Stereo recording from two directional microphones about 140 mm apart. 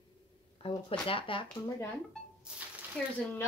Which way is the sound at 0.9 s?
40° left (ahead or behind).